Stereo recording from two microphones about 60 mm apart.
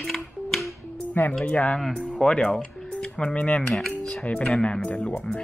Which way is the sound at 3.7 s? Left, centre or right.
Centre.